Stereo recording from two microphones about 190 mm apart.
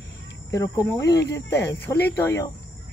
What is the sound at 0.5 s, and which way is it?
Speech, 15° left (ahead or behind).